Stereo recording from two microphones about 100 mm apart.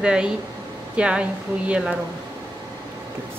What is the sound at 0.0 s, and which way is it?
A woman's voice, 10° right (ahead or behind).